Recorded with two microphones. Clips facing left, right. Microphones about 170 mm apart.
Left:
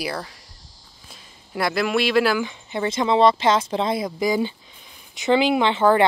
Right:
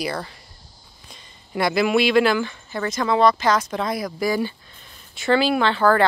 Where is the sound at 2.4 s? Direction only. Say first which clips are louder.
Left 2 dB; 20° left (ahead or behind).